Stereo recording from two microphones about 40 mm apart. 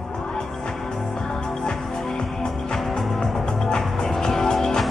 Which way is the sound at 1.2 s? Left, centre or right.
Centre.